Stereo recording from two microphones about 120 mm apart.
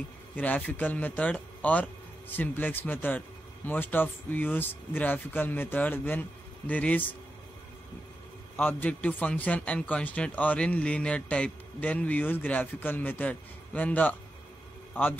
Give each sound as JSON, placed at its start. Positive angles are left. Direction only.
{"t": 0.4, "sound": "speech", "side_deg": 15}
{"t": 8.5, "sound": "speech", "side_deg": 15}